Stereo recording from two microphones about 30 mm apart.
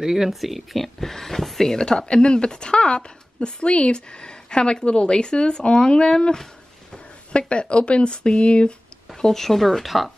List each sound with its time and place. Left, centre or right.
0.0 s speech: centre
0.8 s speech: centre
1.7 s speech: left
7.3 s speech: left
9.2 s speech: centre